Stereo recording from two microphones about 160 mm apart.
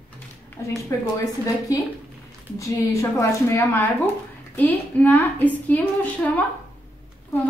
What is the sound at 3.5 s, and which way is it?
Speech, 15° left (ahead or behind).